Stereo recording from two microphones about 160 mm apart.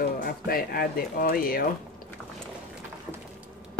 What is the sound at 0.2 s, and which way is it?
Speech, 70° left (ahead or behind).